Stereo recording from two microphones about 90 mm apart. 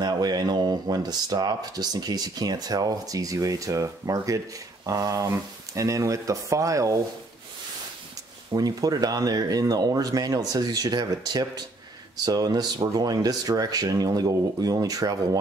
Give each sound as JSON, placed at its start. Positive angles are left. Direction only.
{"t": 0.0, "sound": "speech", "side_deg": -50}
{"t": 8.5, "sound": "speech", "side_deg": -45}